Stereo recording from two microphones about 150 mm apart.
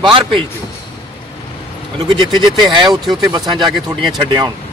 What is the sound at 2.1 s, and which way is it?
Speech, 30° right (ahead or behind).